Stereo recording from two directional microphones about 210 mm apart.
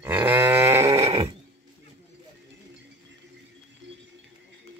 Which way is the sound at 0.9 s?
30° right (ahead or behind).